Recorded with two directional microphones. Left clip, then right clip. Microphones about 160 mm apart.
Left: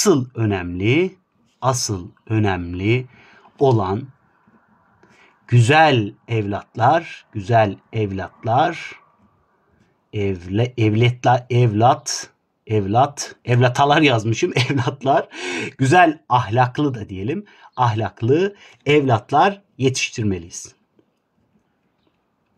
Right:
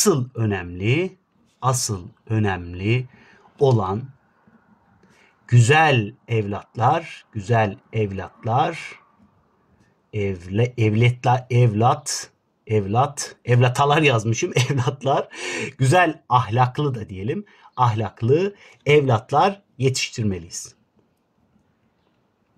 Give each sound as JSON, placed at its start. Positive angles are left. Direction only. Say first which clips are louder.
{"t": 0.0, "sound": "speech", "louder": "left 3 dB", "side_deg": 40}
{"t": 5.4, "sound": "speech", "louder": "left 3 dB", "side_deg": 35}
{"t": 10.1, "sound": "speech", "louder": "left 2 dB", "side_deg": 35}